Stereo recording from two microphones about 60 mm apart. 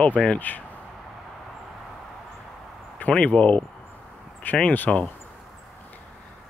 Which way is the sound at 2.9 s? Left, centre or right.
Left.